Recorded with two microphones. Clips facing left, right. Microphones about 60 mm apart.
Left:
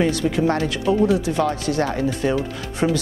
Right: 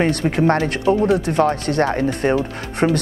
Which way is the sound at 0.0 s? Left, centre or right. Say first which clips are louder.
Right 2 dB; right.